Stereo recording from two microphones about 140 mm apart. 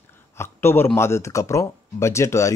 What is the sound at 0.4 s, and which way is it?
A man's voice, 15° left (ahead or behind).